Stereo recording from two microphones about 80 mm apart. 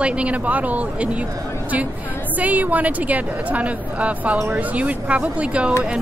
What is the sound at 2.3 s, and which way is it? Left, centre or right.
A woman's voice, centre.